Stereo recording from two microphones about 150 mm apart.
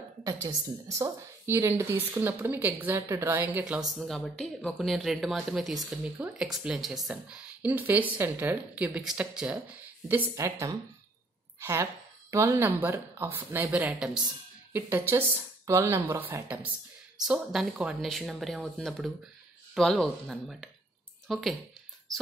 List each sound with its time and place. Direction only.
0.2 s speech: 25° right (ahead or behind)
4.1 s speech: centre (ahead or behind)